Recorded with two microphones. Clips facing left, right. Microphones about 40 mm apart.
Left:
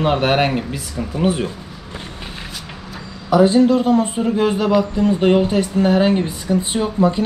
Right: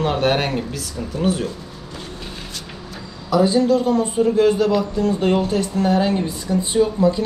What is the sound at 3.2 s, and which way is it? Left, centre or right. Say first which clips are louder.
Speech: left 3 dB; left.